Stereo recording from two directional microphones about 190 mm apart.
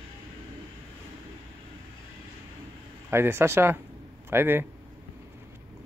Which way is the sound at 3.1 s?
15° right (ahead or behind).